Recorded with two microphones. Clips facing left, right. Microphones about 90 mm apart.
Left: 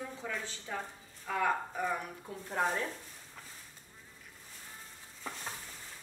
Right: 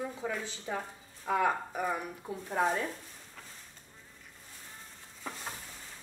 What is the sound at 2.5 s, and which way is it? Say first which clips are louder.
Speech: right 3 dB; 5° right (ahead or behind).